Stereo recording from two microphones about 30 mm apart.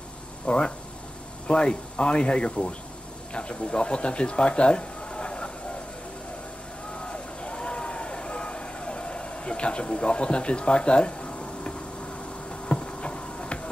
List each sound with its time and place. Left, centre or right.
0.5 s speech: left
7.0 s vehicle: left
12.4 s a sound: left